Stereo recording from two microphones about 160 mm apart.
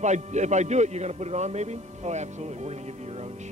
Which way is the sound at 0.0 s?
45° right (ahead or behind).